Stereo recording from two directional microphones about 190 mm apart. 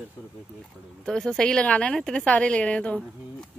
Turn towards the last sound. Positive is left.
turn(degrees=5)  # may be behind; listen again after turning